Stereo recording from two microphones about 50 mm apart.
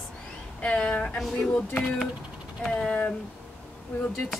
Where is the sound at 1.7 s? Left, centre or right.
Left.